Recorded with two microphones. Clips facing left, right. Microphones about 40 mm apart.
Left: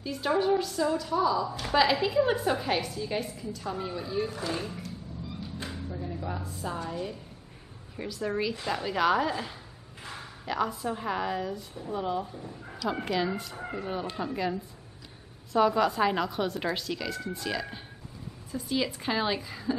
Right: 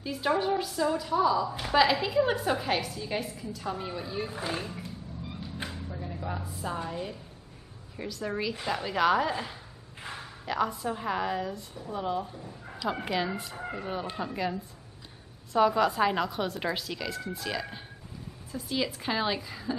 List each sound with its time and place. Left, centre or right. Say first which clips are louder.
0.0 s a woman's voice: left 1 dB; centre
4.8 s vehicle: left 1 dB; right
5.7 s a sound: left 2 dB; centre
6.9 s a woman's voice: left 1 dB; centre